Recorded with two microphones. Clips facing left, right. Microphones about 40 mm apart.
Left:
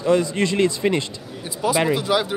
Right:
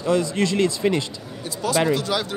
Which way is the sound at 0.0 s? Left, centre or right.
Left.